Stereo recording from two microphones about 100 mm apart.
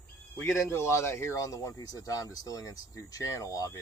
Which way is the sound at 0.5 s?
25° left (ahead or behind).